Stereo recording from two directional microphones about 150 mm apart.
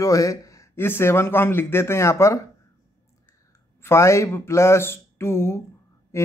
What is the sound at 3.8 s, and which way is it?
Speech, 20° left (ahead or behind).